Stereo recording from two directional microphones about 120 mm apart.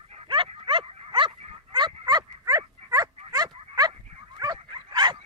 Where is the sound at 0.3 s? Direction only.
45° right (ahead or behind).